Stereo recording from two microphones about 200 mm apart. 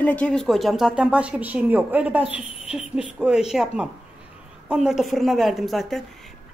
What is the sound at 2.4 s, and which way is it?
Speech, 30° left (ahead or behind).